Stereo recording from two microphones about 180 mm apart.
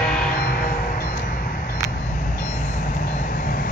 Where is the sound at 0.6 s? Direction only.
55° left (ahead or behind).